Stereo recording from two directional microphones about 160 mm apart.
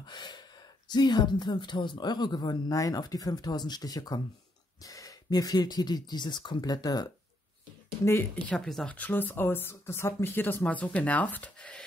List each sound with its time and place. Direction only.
0.0 s gasp: 25° left (ahead or behind)
0.8 s speech: 25° left (ahead or behind); by 11.8 s 10° left (ahead or behind)